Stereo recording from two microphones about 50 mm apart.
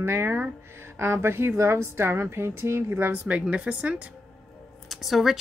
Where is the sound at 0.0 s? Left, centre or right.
Right.